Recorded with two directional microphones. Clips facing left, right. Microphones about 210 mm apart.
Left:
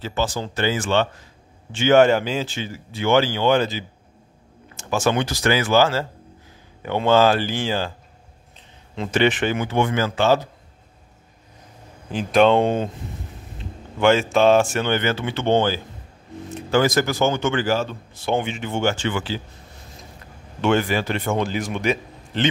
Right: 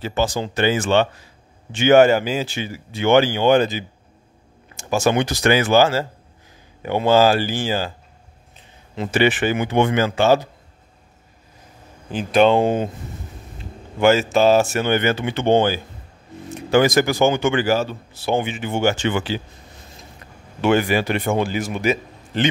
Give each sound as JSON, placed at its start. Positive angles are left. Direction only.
{"t": 0.0, "sound": "speech", "side_deg": -15}
{"t": 8.9, "sound": "speech", "side_deg": -5}
{"t": 12.1, "sound": "speech", "side_deg": 0}
{"t": 13.9, "sound": "speech", "side_deg": -5}
{"t": 20.6, "sound": "speech", "side_deg": -10}